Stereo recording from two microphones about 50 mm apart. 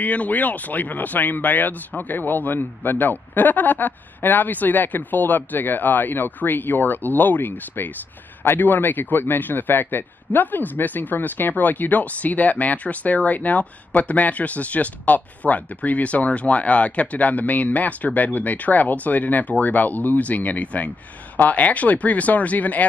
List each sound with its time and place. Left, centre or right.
0.0 s speech: left